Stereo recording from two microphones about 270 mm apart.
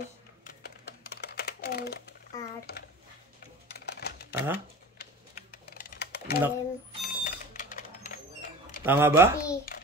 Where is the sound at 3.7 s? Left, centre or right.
Left.